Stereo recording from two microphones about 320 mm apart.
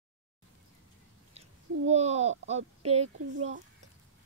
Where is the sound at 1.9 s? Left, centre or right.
Right.